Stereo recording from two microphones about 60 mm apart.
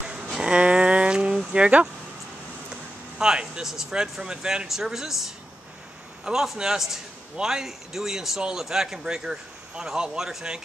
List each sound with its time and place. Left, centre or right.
0.0 s a sound: centre
1.5 s speech: right
6.2 s a man's voice: centre